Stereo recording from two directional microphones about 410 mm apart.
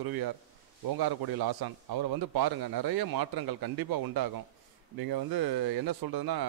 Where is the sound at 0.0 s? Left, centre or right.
Right.